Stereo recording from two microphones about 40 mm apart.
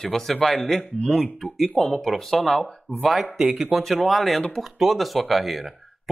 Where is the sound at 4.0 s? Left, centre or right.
Centre.